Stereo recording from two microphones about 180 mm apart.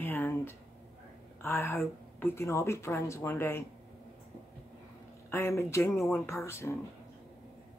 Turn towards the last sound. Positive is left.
turn(degrees=15)  # may be behind; listen again after turning